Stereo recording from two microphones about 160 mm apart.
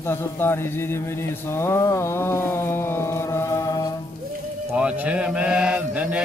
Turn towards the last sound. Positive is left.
turn(degrees=-10)  # may be behind; listen again after turning